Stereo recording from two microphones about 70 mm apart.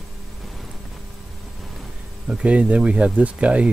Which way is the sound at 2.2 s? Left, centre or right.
Centre.